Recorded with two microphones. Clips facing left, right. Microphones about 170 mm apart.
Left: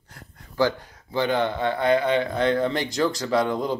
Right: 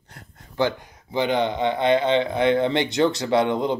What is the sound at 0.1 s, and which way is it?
Speech, 20° right (ahead or behind).